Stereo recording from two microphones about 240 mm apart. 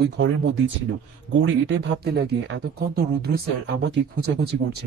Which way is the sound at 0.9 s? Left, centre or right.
Right.